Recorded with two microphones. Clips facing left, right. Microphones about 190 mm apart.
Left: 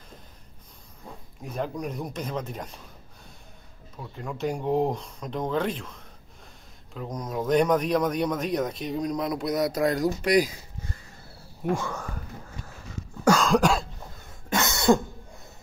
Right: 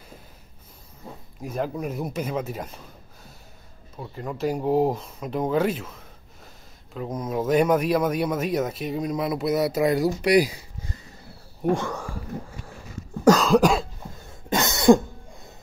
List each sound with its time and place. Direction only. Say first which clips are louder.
1.4 s speech: right 3 dB; 5° right (ahead or behind)
4.0 s speech: right 3 dB; 5° right (ahead or behind)
7.2 s speech: right 2 dB; 5° right (ahead or behind)
13.4 s cough: right 3 dB; 5° right (ahead or behind)
14.5 s cough: right 5 dB; 20° right (ahead or behind)